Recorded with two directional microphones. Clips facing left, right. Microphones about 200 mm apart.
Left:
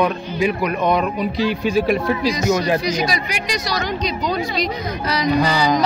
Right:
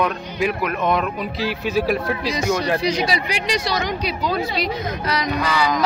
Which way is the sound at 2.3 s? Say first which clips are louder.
Even; 30° right (ahead or behind).